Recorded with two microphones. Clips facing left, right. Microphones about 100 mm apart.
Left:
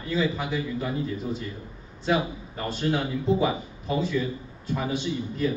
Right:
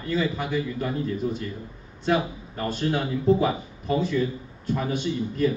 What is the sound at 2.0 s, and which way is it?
Speech, centre (ahead or behind).